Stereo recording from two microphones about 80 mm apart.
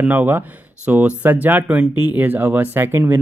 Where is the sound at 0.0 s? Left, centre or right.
Right.